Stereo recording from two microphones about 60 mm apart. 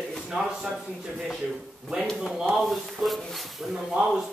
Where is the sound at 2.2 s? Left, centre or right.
Centre.